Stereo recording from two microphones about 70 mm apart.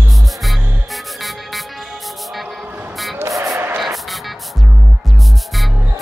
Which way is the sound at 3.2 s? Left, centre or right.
Right.